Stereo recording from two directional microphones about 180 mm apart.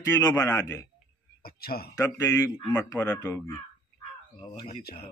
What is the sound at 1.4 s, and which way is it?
Speech, 60° left (ahead or behind).